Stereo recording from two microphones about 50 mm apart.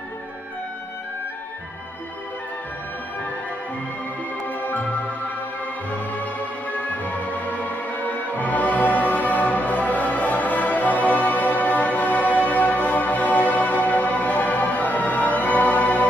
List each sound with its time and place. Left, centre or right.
4.5 s music: left
6.9 s music: left